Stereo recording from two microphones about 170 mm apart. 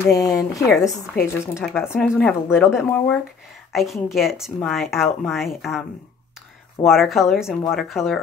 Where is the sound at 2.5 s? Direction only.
15° left (ahead or behind).